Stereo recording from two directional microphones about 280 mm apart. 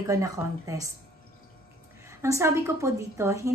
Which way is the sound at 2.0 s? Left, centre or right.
Centre.